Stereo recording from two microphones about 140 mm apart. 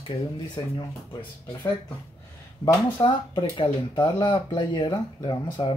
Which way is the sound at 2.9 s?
40° left (ahead or behind).